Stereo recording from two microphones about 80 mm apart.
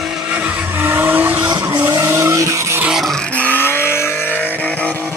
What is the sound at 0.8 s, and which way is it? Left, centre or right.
Vehicle, right.